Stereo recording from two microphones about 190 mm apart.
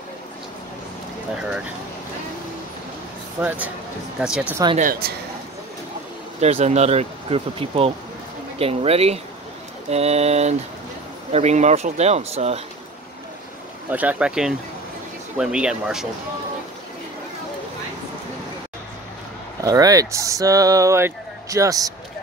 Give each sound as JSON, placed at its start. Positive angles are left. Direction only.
{"t": 1.3, "sound": "speech", "side_deg": -5}
{"t": 3.3, "sound": "speech", "side_deg": -10}
{"t": 4.7, "sound": "speech", "side_deg": -45}
{"t": 6.4, "sound": "speech", "side_deg": -35}
{"t": 13.8, "sound": "speech", "side_deg": -10}
{"t": 19.6, "sound": "speech", "side_deg": -20}